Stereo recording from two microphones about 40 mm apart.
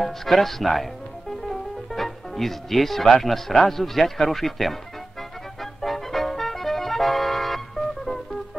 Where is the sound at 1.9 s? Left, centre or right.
Centre.